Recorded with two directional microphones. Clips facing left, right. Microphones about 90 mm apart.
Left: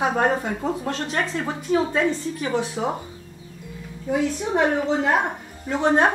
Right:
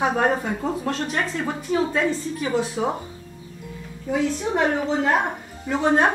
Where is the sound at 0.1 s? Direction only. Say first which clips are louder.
Even; 5° left (ahead or behind).